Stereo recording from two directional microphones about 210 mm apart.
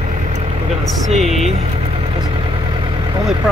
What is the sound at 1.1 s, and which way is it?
Speech, 30° right (ahead or behind).